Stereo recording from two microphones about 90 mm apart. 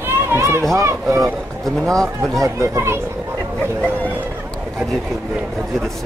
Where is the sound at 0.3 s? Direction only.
30° right (ahead or behind).